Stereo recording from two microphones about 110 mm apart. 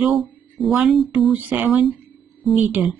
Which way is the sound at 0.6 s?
5° right (ahead or behind).